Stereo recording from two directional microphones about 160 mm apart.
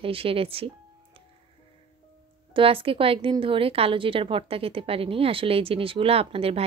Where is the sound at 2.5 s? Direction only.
35° right (ahead or behind).